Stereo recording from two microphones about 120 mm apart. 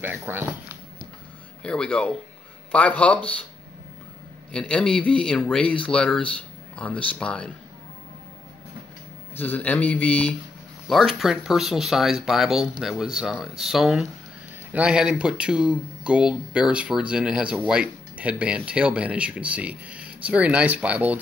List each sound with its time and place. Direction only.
0.0 s speech: 15° right (ahead or behind)
1.6 s speech: 10° left (ahead or behind)
4.5 s speech: 10° left (ahead or behind)
9.4 s speech: 15° left (ahead or behind); by 21.2 s 10° right (ahead or behind)